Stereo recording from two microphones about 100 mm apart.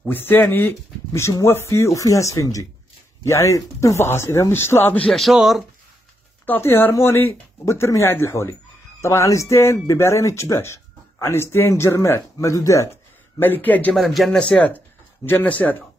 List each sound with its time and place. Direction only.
0.0 s speech: 20° left (ahead or behind)
5.0 s speech: centre (ahead or behind)
6.4 s speech: 20° left (ahead or behind)
13.4 s speech: 20° left (ahead or behind)
13.9 s speech: centre (ahead or behind)